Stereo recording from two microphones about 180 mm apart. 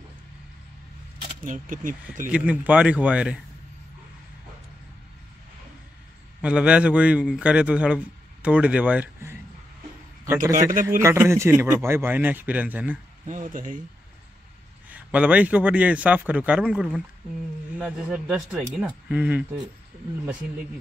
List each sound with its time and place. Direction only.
1.4 s speech: 45° right (ahead or behind)
2.3 s a man's voice: 10° right (ahead or behind)
6.4 s a man's voice: 5° right (ahead or behind)
10.7 s speech: 45° right (ahead or behind)
11.0 s a man's voice: 15° right (ahead or behind)
13.3 s speech: 45° right (ahead or behind)
14.9 s a man's voice: 10° right (ahead or behind)